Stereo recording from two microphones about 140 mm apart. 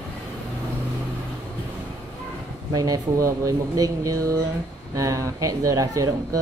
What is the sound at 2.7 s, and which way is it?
Speech, 25° right (ahead or behind).